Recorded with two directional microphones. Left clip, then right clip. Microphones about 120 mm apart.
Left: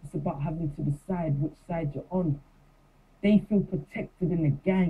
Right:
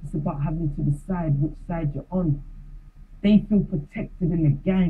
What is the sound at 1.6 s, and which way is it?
Speech, 15° left (ahead or behind).